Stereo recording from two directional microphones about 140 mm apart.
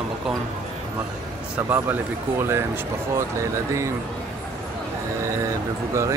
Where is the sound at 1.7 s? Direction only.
15° right (ahead or behind).